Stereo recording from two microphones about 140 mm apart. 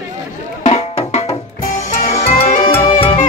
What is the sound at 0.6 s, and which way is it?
Music, 50° left (ahead or behind).